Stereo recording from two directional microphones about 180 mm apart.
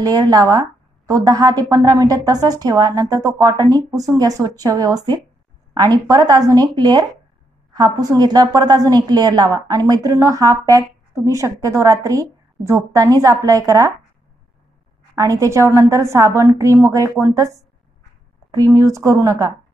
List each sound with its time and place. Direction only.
0.0 s a woman's voice: 20° right (ahead or behind)
15.1 s a woman's voice: 15° right (ahead or behind)